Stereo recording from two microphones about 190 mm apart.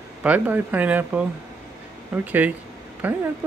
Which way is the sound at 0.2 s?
10° right (ahead or behind).